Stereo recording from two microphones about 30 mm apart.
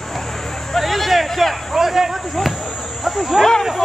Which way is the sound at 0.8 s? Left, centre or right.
Centre.